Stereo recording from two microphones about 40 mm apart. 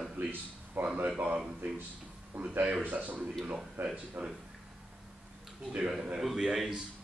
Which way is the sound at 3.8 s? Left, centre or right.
Right.